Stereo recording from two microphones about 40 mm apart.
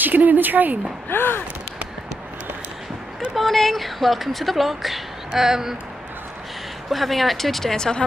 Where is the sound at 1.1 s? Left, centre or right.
Left.